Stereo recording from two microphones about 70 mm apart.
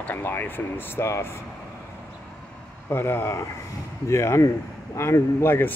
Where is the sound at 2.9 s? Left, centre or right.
Left.